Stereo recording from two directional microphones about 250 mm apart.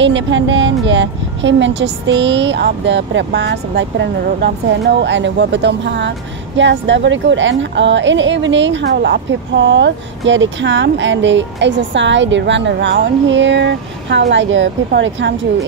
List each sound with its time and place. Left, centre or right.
0.0 s a woman's voice: right